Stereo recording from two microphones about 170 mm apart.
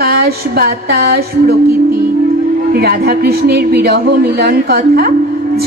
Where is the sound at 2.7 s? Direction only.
65° right (ahead or behind).